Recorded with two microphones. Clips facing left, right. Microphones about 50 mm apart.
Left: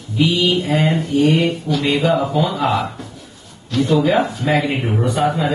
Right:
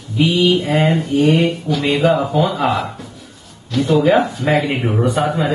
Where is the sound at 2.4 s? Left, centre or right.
Right.